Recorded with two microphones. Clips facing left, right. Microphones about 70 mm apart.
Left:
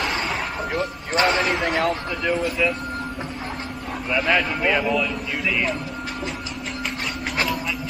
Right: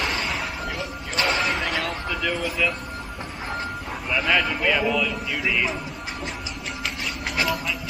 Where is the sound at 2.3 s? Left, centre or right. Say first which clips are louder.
Left 3 dB; centre.